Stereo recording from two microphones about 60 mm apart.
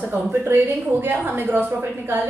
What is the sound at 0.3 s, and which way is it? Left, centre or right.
A woman's voice, right.